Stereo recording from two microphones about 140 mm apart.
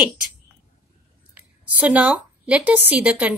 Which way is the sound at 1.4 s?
10° right (ahead or behind).